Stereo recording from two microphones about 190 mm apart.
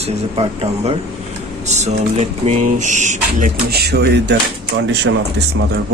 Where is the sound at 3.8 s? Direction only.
60° right (ahead or behind).